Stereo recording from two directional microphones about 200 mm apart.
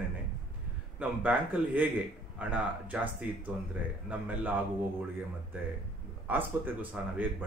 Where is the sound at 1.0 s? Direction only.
10° right (ahead or behind).